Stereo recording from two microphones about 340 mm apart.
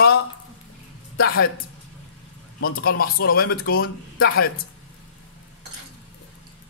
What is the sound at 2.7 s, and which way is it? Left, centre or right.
Speech, left.